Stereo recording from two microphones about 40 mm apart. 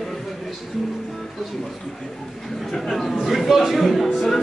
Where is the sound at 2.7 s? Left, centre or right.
Centre.